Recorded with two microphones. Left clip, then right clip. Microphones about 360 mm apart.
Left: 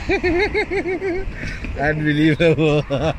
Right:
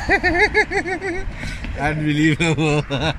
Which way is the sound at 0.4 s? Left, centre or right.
Centre.